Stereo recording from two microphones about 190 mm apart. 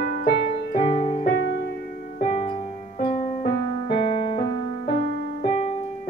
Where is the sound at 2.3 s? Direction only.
30° left (ahead or behind).